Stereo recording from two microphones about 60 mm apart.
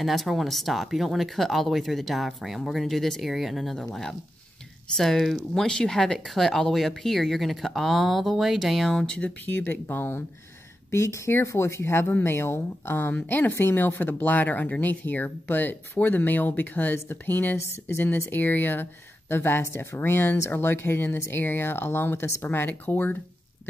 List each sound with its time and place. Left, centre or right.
0.0 s speech: centre
9.0 s speech: centre
9.5 s speech: left